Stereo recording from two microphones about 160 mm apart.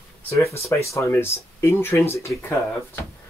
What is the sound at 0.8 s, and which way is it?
Speech, 20° left (ahead or behind).